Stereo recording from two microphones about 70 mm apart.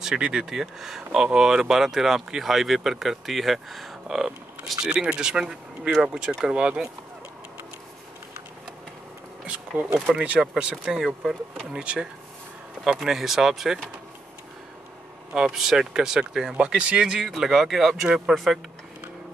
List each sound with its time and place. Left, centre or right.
0.0 s speech: centre
9.5 s speech: right; by 13.8 s centre
15.3 s speech: centre